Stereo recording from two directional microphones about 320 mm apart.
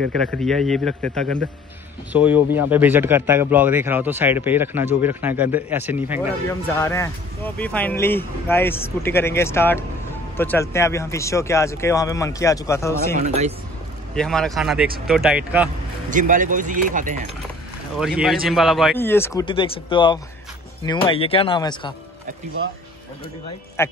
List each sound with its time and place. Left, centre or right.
0.3 s a man's voice: centre
6.7 s speech: centre
14.1 s speech: centre
16.1 s speech: right
17.9 s speech: centre
23.8 s speech: centre